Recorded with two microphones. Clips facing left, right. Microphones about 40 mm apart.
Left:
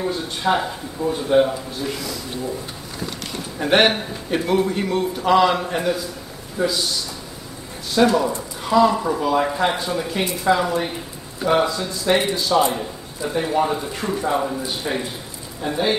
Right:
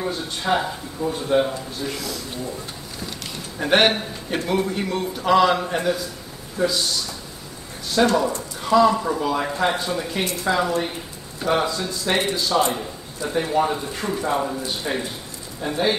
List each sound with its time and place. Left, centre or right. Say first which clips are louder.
0.0 s speech: left 3 dB; centre
3.5 s a man's voice: left 1 dB; centre
7.9 s a man's voice: left 2 dB; centre